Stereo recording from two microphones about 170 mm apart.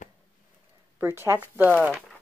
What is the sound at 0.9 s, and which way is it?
Speech, 15° right (ahead or behind).